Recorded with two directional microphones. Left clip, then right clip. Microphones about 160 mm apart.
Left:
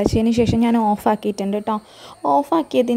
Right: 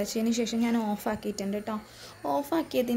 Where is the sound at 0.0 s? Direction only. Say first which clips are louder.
Left 11 dB; 50° left (ahead or behind).